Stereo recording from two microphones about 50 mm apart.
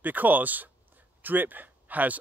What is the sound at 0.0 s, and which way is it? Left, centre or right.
Speech, right.